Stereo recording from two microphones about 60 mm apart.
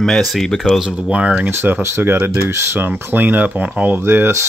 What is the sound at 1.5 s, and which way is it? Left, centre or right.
Speech, right.